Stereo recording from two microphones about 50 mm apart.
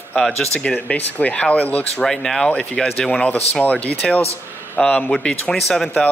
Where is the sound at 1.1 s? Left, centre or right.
Left.